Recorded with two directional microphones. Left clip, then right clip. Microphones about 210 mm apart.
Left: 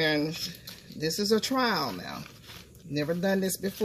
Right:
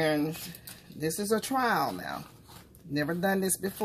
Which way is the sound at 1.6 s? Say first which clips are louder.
Even; 25° right (ahead or behind).